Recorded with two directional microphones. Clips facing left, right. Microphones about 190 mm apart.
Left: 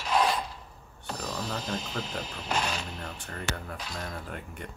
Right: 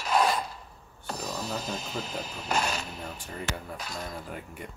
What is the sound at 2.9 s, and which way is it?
Speech, 10° right (ahead or behind).